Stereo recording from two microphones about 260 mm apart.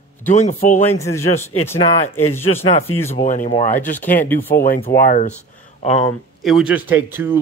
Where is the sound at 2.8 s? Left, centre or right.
Centre.